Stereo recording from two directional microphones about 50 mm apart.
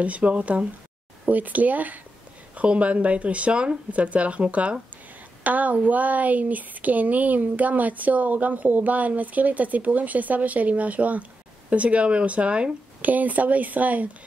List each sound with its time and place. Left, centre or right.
0.0 s speech: right
13.0 s speech: right